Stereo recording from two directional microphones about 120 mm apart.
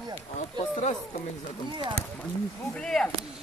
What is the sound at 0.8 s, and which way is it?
Speech, 70° left (ahead or behind).